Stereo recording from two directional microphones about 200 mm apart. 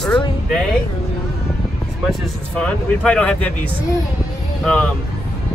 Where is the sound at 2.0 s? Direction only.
5° left (ahead or behind).